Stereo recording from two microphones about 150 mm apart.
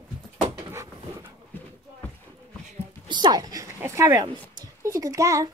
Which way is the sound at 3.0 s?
30° right (ahead or behind).